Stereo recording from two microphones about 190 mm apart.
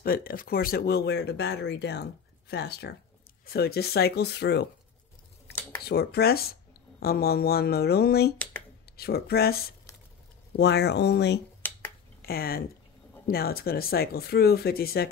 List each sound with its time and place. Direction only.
0.0 s speech: 50° left (ahead or behind)
5.5 s a sound: 10° left (ahead or behind)
5.9 s speech: 55° left (ahead or behind)
11.6 s finger snapping: 10° left (ahead or behind)
12.2 s speech: 55° left (ahead or behind)